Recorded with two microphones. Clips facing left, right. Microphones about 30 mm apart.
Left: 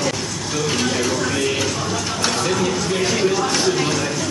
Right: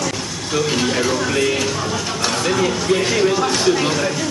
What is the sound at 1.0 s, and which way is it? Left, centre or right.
Music, centre.